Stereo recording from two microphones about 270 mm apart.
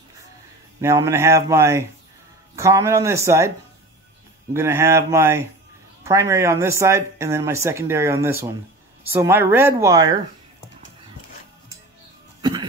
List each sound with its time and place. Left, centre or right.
0.7 s speech: centre
4.6 s speech: centre
12.4 s cough: centre